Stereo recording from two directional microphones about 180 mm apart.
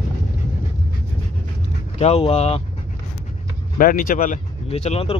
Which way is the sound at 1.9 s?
35° left (ahead or behind).